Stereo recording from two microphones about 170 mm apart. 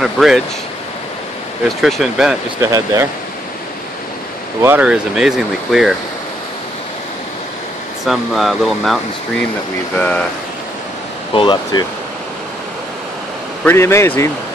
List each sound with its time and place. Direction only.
0.0 s speech: centre (ahead or behind)
1.8 s speech: centre (ahead or behind)
2.6 s speech: 20° right (ahead or behind)
4.6 s speech: 5° right (ahead or behind)
8.0 s a man's voice: centre (ahead or behind)
11.3 s speech: 30° left (ahead or behind)
13.7 s a man's voice: 15° left (ahead or behind)